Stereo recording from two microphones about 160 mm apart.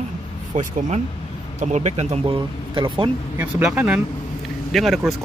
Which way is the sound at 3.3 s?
5° right (ahead or behind).